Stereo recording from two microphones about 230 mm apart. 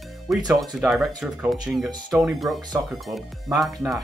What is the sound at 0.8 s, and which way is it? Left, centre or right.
Speech, centre.